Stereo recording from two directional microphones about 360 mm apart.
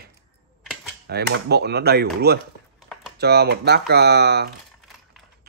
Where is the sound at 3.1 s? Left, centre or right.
Right.